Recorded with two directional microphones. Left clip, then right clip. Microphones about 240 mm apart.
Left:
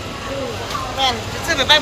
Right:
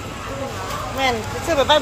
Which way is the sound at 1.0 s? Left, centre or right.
Right.